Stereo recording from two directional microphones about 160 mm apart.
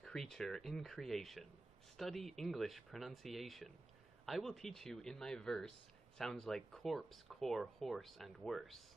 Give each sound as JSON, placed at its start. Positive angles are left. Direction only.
{"t": 0.0, "sound": "speech", "side_deg": 5}